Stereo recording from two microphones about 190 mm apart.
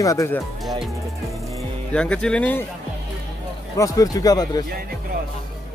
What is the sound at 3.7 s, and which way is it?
Speech, 15° left (ahead or behind).